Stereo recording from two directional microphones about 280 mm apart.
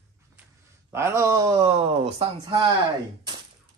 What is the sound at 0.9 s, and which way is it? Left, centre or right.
Speech, centre.